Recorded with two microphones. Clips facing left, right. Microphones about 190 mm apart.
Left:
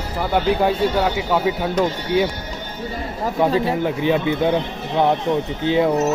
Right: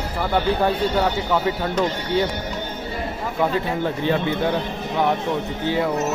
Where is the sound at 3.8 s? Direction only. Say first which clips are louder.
Left 2 dB; 15° left (ahead or behind).